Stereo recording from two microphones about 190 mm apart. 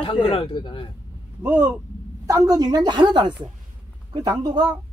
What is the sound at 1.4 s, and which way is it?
Speech, 10° right (ahead or behind).